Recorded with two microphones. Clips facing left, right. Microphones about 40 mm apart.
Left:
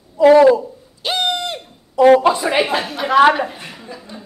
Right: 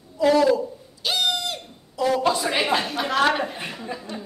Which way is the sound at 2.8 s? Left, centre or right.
Centre.